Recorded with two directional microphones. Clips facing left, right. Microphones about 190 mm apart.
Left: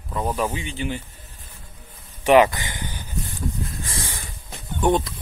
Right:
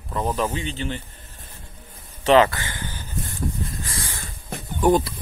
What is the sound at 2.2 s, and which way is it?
Speech, 15° left (ahead or behind).